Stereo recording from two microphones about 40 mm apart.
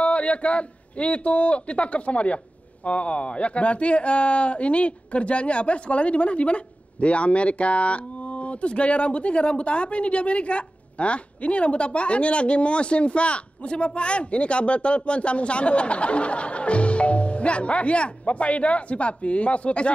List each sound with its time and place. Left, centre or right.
0.0 s a man's voice: left